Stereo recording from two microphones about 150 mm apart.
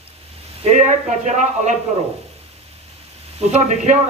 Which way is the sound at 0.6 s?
50° right (ahead or behind).